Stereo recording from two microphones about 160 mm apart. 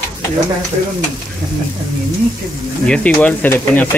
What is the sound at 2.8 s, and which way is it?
Speech, 5° left (ahead or behind).